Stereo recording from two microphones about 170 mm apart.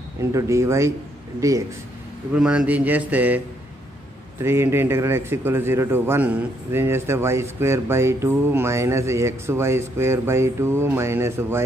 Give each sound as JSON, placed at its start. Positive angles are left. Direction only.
{"t": 0.2, "sound": "speech", "side_deg": -20}
{"t": 2.3, "sound": "speech", "side_deg": -5}